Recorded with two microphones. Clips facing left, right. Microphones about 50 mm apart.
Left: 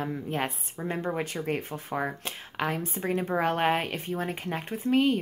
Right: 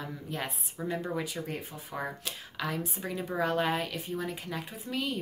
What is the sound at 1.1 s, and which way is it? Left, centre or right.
Speech, left.